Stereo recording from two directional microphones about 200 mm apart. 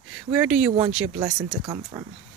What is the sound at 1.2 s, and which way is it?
Speech, 20° right (ahead or behind).